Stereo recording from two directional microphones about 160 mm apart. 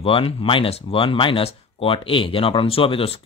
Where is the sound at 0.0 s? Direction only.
35° left (ahead or behind).